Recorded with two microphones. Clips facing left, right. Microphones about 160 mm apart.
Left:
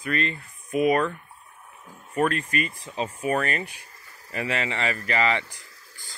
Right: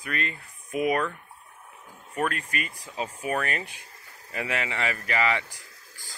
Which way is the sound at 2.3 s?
10° right (ahead or behind).